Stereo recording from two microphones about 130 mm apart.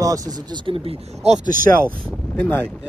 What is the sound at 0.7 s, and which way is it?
Speech, 50° right (ahead or behind).